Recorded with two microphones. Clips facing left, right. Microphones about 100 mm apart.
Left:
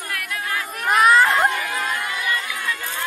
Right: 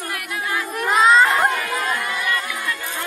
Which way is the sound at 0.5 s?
20° right (ahead or behind).